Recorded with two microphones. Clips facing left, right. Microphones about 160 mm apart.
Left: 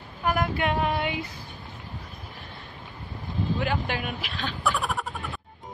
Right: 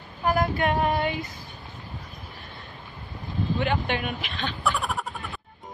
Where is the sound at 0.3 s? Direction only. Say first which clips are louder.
Right 2 dB; 40° right (ahead or behind).